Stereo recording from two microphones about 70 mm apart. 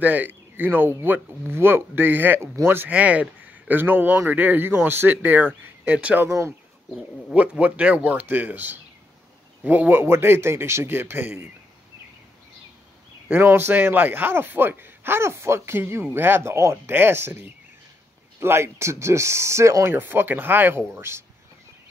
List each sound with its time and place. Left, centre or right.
0.0 s speech: right
2.4 s speech: right
2.9 s speech: centre
6.2 s speech: right
7.3 s speech: centre
13.3 s speech: right
19.9 s speech: right